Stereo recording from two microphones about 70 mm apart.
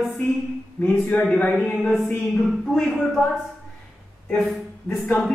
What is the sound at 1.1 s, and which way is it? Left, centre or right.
Speech, centre.